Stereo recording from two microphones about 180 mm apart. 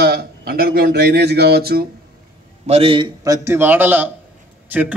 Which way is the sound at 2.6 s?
35° right (ahead or behind).